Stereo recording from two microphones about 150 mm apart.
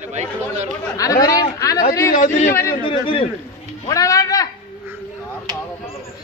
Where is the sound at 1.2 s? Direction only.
20° left (ahead or behind).